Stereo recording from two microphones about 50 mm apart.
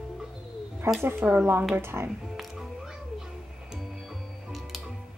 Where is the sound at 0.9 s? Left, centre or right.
Right.